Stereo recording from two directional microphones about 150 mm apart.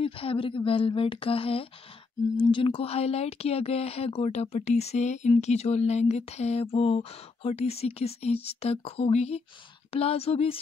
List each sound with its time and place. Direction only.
0.0 s a woman's voice: 40° left (ahead or behind)